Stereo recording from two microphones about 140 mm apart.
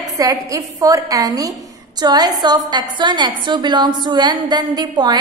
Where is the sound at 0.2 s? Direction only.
25° right (ahead or behind).